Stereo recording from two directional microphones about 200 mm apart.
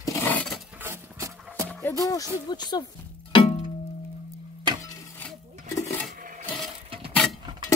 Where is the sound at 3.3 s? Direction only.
25° left (ahead or behind).